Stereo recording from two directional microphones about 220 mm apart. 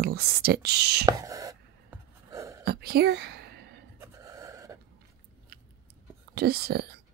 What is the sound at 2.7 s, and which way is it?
Whispering, 45° right (ahead or behind).